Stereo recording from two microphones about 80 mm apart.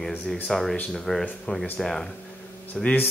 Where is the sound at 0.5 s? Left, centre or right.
Centre.